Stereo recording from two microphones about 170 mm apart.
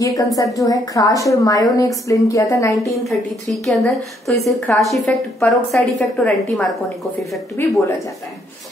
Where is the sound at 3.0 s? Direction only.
Centre (ahead or behind).